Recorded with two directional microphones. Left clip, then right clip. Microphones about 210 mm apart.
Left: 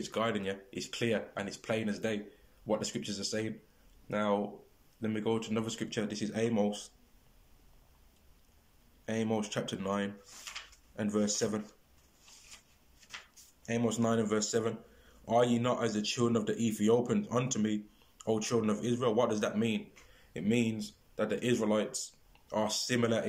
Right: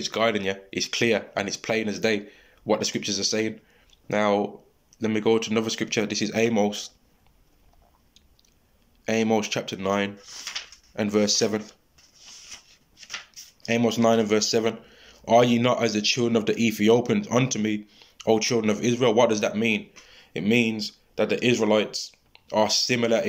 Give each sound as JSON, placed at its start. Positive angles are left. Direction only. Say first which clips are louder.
{"t": 0.0, "sound": "speech", "louder": "right 10 dB", "side_deg": -5}
{"t": 9.0, "sound": "speech", "louder": "right 11 dB", "side_deg": -10}
{"t": 10.5, "sound": "speech", "louder": "right 11 dB", "side_deg": -30}
{"t": 11.0, "sound": "speech", "louder": "right 10 dB", "side_deg": -10}
{"t": 13.7, "sound": "speech", "louder": "right 11 dB", "side_deg": -10}